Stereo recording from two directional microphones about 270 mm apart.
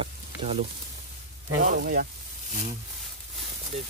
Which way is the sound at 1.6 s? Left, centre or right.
Right.